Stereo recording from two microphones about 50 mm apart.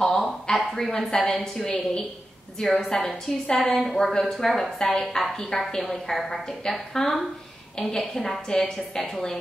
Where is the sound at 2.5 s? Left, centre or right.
Centre.